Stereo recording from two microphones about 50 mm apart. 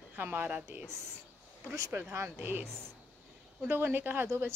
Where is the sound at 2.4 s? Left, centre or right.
Right.